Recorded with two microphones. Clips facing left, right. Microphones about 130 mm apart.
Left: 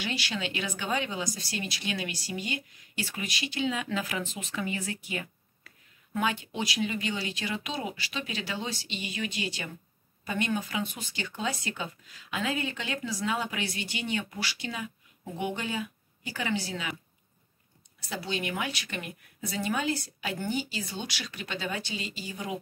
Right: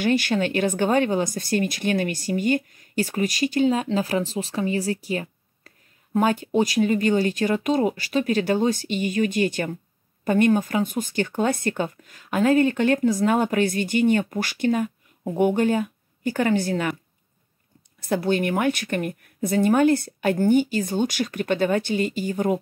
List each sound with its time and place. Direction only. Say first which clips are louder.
0.0 s speech: right 12 dB; 50° right (ahead or behind)
18.0 s speech: right 12 dB; 55° right (ahead or behind)